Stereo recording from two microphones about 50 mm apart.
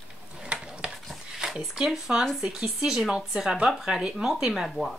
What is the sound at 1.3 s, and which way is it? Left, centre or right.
Speech, centre.